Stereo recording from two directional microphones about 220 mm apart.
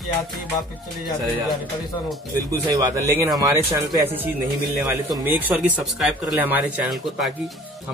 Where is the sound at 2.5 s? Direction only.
15° right (ahead or behind).